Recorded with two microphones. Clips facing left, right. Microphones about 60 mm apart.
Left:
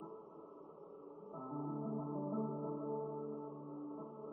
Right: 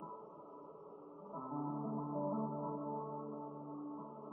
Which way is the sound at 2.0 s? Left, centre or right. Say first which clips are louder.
Right 2 dB; right.